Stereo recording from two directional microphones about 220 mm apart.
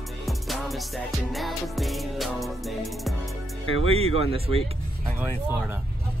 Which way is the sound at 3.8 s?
25° right (ahead or behind).